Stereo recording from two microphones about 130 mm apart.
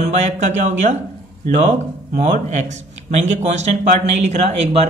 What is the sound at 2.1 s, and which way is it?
Speech, 65° right (ahead or behind).